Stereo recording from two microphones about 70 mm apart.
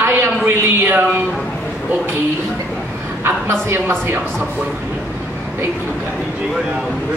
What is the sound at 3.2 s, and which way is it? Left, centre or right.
Speech, right.